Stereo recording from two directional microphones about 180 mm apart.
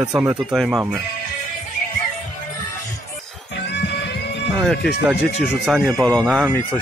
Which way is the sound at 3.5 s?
70° left (ahead or behind).